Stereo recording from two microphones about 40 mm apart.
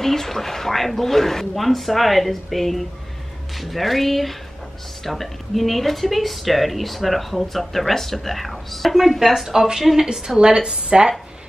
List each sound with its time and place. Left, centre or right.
0.0 s a woman's voice: centre; by 11.1 s right